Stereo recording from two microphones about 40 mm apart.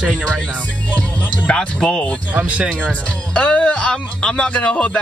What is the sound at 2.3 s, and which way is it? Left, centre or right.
Speech, right.